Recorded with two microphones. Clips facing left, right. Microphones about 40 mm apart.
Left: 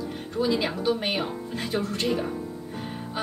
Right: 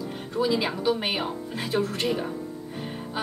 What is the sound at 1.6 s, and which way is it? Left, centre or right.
Speech, centre.